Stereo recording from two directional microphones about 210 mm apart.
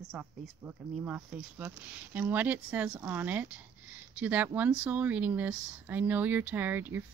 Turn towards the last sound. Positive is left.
turn(degrees=-10)  # may be behind; listen again after turning